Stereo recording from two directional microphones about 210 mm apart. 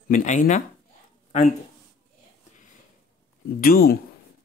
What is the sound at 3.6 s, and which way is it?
Speech, 45° left (ahead or behind).